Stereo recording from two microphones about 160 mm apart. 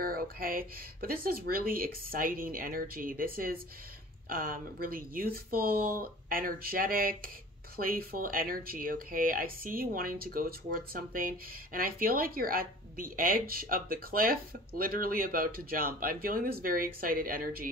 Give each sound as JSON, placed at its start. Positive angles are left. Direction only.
{"t": 0.0, "sound": "speech", "side_deg": -65}